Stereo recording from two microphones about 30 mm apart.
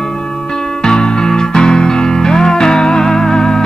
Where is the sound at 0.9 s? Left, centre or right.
Left.